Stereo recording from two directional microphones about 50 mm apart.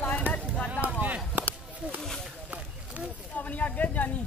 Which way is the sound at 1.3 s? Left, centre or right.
Right.